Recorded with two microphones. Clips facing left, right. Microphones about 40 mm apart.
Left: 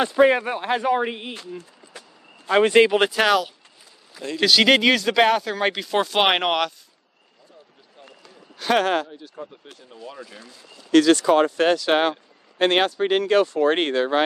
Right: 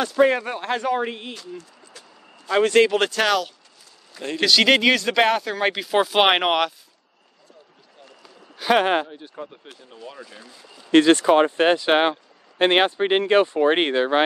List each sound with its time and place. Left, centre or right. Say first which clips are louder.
0.2 s speech: left 1 dB; centre
1.6 s speech: left 2 dB; left; by 6.7 s centre
8.2 s a sound: right 2 dB; centre
8.8 s speech: right 1 dB; right
9.7 s speech: even; centre
10.9 s speech: right 1 dB; right